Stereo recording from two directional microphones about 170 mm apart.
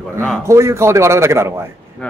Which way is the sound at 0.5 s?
15° right (ahead or behind).